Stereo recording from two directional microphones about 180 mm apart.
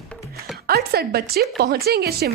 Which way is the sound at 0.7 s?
60° right (ahead or behind).